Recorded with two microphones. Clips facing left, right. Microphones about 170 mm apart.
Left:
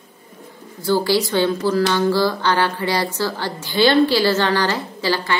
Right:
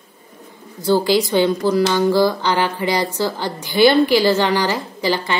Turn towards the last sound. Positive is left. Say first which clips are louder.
# right 1 dB
turn(degrees=-15)  # may be behind; listen again after turning